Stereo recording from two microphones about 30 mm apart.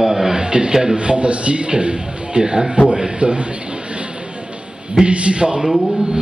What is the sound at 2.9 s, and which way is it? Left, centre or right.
Speech, right.